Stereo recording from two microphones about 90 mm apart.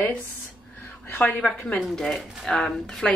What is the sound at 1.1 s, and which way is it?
Speech, 15° left (ahead or behind).